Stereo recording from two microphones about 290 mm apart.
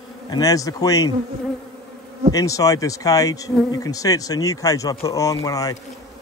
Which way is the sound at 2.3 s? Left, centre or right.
Centre.